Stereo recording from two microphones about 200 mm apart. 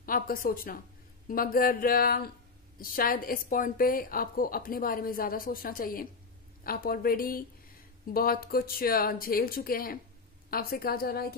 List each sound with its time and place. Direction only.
0.0 s a woman's voice: 45° left (ahead or behind)